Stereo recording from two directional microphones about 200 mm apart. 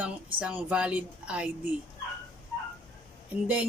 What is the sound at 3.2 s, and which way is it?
Speech, 5° right (ahead or behind).